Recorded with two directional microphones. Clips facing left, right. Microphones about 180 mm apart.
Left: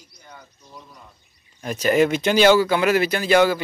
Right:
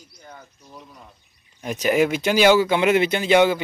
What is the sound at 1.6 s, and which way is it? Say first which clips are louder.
Speech: left 1 dB; 15° right (ahead or behind).